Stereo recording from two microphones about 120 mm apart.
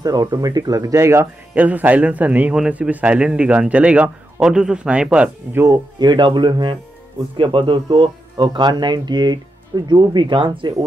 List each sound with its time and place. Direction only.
0.0 s speech: 35° right (ahead or behind)
1.5 s a man's voice: 15° right (ahead or behind)
5.9 s speech: 40° right (ahead or behind)